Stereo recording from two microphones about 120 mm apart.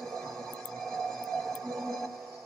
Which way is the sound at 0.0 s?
5° left (ahead or behind).